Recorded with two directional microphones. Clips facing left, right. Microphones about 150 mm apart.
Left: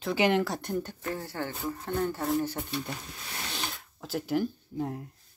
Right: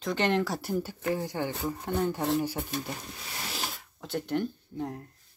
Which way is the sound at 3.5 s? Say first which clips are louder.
Even; centre (ahead or behind).